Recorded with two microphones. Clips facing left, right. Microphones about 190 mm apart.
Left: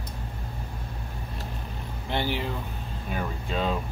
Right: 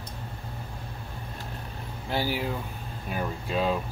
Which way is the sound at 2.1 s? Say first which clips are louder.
Even; 5° right (ahead or behind).